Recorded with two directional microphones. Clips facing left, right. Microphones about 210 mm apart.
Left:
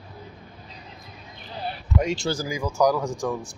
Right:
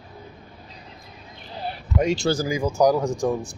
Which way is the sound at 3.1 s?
25° right (ahead or behind).